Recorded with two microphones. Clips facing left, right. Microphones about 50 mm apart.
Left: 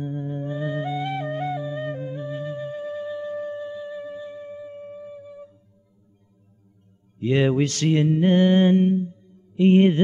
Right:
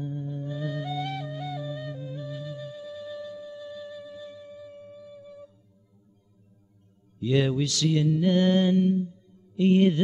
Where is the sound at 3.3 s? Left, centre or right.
Left.